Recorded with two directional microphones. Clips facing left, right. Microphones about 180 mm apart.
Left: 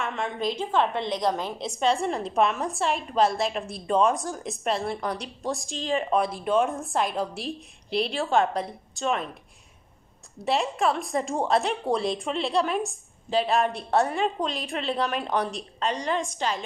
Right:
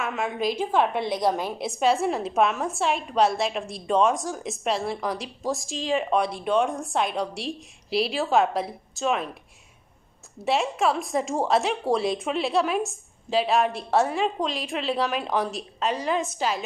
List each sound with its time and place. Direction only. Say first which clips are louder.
0.0 s a woman's voice: right 2 dB; 5° right (ahead or behind)
10.4 s a woman's voice: right 1 dB; centre (ahead or behind)